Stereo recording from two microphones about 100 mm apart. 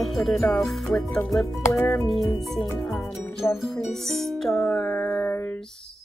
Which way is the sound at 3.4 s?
25° left (ahead or behind).